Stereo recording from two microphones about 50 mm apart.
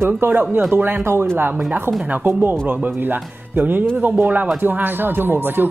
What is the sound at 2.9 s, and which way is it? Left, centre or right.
Speech, right.